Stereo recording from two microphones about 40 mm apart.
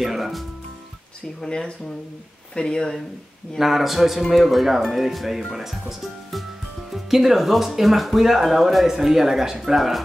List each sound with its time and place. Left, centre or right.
0.0 s music: centre
1.4 s speech: centre
3.5 s speech: centre